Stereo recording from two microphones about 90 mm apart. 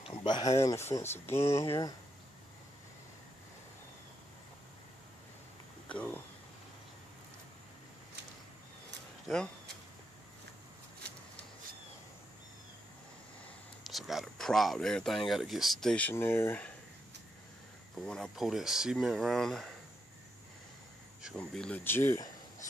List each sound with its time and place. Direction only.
0.0 s a sound: 60° left (ahead or behind)
0.7 s speech: 30° left (ahead or behind)
5.9 s a sound: 15° left (ahead or behind)
9.3 s speech: centre (ahead or behind)
13.8 s speech: centre (ahead or behind)
16.0 s speech: 20° left (ahead or behind)
18.0 s speech: 5° left (ahead or behind)
18.3 s speech: 5° right (ahead or behind)
21.4 s speech: 10° left (ahead or behind)
21.8 s speech: 25° left (ahead or behind)